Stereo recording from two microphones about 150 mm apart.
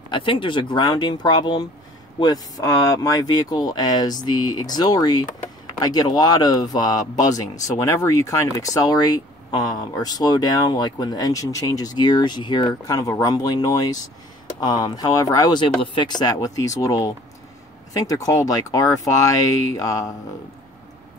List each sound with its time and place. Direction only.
0.1 s speech: 35° left (ahead or behind)